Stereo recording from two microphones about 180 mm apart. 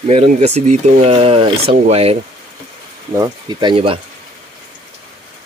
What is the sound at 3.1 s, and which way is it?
Speech, 20° right (ahead or behind).